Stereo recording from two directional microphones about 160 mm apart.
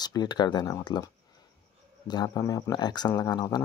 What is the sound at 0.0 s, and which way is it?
Speech, 25° left (ahead or behind).